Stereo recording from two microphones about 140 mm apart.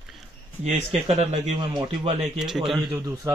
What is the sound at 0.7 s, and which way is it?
Speech, 50° right (ahead or behind).